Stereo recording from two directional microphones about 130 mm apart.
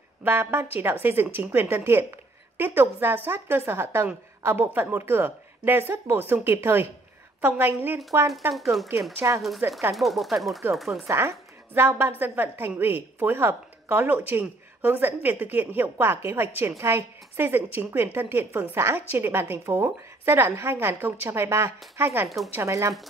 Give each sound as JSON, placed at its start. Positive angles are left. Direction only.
{"t": 0.2, "sound": "a woman's voice", "side_deg": -20}
{"t": 9.2, "sound": "a woman's voice", "side_deg": -20}
{"t": 9.9, "sound": "speech", "side_deg": 0}
{"t": 11.1, "sound": "a woman's voice", "side_deg": -20}